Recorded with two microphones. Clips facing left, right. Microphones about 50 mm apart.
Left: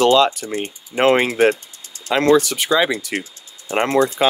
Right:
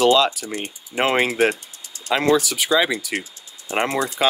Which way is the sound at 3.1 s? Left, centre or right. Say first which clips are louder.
Left 2 dB; left.